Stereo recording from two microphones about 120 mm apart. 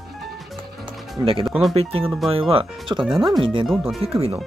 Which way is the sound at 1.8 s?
55° right (ahead or behind).